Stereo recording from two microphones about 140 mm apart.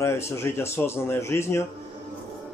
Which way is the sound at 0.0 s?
20° left (ahead or behind).